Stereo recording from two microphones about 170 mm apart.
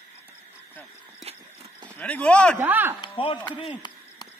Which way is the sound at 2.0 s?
10° left (ahead or behind).